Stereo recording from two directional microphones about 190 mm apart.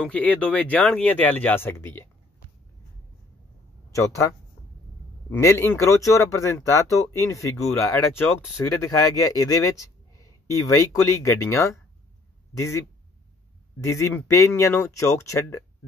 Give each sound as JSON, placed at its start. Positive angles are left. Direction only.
{"t": 0.0, "sound": "speech", "side_deg": 5}
{"t": 3.9, "sound": "speech", "side_deg": 15}
{"t": 5.3, "sound": "speech", "side_deg": 15}